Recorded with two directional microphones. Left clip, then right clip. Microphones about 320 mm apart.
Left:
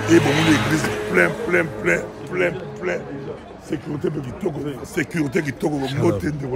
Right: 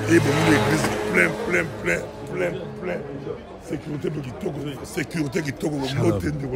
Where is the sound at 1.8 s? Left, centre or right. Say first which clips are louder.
Left 4 dB; left.